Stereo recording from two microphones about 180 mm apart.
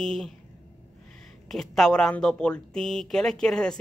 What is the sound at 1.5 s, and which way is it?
Speech, centre (ahead or behind).